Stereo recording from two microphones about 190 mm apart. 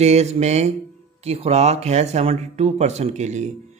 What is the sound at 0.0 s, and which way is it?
A man's voice, 35° right (ahead or behind).